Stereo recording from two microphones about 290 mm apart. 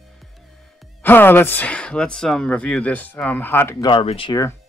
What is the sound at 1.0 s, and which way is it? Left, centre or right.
Speech, centre.